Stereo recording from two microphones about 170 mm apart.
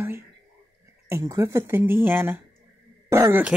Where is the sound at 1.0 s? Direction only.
15° right (ahead or behind).